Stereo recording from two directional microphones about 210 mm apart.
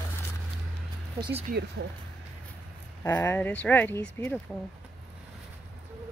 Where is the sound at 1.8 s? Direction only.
50° right (ahead or behind).